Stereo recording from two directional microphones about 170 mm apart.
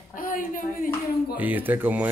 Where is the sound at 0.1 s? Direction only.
55° left (ahead or behind).